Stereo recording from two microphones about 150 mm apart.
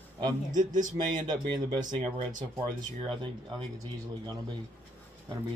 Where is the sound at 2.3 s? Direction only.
60° right (ahead or behind).